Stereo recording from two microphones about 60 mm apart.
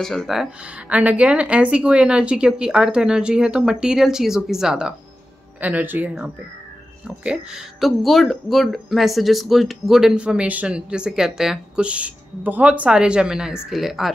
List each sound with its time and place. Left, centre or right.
0.0 s speech: centre
0.8 s speech: right
5.6 s speech: right
7.1 s speech: centre
7.8 s speech: centre
10.1 s speech: centre